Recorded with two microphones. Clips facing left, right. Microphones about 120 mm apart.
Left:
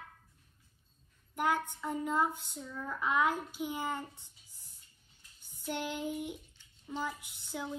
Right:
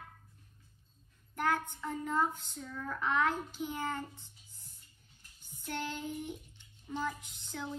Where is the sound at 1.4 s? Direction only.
15° left (ahead or behind).